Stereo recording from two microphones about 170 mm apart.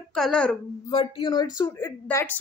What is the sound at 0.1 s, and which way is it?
Speech, 5° left (ahead or behind).